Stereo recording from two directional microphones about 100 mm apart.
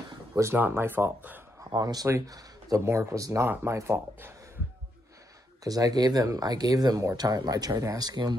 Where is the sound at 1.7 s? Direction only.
40° right (ahead or behind).